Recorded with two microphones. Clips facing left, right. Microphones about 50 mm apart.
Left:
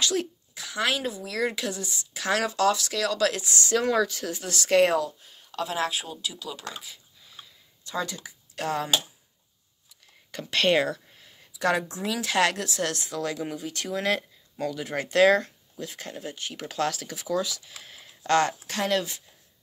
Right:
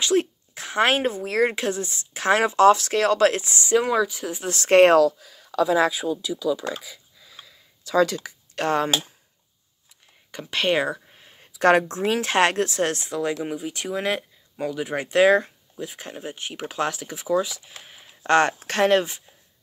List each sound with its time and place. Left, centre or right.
0.0 s speech: right
3.5 s speech: centre
4.4 s speech: right
8.0 s speech: right
8.5 s speech: right
10.3 s speech: centre
11.1 s a sound: right
11.5 s a sound: right
11.9 s speech: right
17.8 s a sound: centre
18.2 s speech: right